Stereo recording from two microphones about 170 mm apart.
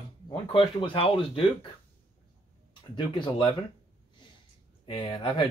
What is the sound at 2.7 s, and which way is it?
Speech, 30° left (ahead or behind).